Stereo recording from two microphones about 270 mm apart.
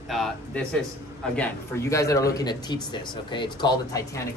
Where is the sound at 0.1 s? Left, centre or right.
Centre.